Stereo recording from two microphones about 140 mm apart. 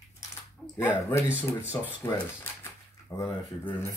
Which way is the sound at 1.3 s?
10° right (ahead or behind).